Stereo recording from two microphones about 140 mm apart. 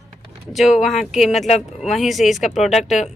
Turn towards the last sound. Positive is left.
turn(degrees=55)  # may be behind; listen again after turning